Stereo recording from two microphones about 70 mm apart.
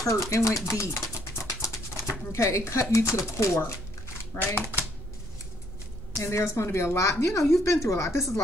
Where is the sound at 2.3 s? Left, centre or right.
Left.